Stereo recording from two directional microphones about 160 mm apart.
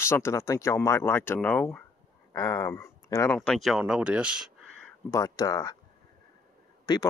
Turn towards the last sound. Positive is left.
turn(degrees=25)  # may be behind; listen again after turning